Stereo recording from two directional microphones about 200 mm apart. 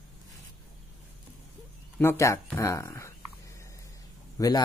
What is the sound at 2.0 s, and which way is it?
Speech, 15° left (ahead or behind).